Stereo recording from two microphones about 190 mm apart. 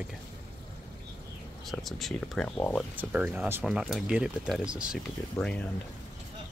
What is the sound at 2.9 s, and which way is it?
Speech, 10° right (ahead or behind).